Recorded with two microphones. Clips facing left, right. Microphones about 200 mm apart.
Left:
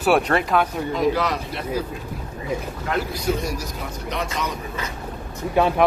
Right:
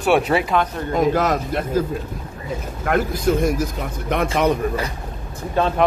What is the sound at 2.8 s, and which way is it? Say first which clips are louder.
Speech: right 6 dB; 50° right (ahead or behind).